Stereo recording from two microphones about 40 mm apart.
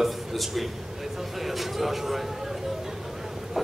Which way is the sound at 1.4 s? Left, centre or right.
Centre.